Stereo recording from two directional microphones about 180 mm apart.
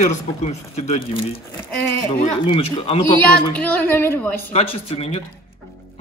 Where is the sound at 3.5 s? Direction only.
10° left (ahead or behind).